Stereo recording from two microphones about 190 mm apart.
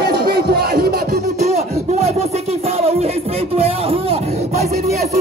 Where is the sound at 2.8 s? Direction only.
30° right (ahead or behind).